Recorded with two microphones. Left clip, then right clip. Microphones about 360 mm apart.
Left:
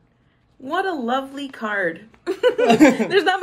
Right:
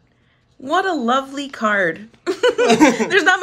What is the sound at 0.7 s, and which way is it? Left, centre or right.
Speech, centre.